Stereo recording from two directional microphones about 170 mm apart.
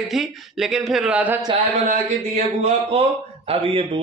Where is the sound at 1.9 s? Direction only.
40° right (ahead or behind).